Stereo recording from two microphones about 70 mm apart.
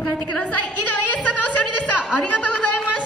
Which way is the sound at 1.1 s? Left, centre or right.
Left.